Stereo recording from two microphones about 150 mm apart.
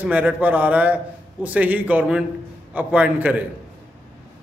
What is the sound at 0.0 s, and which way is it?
A man's voice, 10° right (ahead or behind).